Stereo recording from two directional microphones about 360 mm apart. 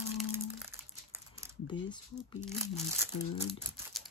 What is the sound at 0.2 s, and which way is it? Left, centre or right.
Crumpling, centre.